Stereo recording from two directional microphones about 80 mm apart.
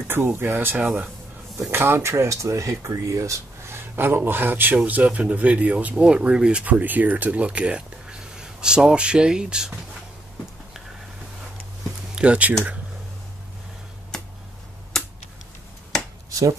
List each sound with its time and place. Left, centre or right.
0.1 s speech: right; by 9.7 s centre
12.2 s speech: centre